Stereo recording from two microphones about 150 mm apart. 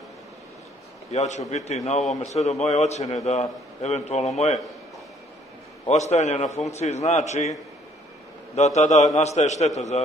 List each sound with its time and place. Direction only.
1.1 s a man's voice: 50° left (ahead or behind)
5.9 s a man's voice: 50° left (ahead or behind)
8.5 s a man's voice: 45° left (ahead or behind)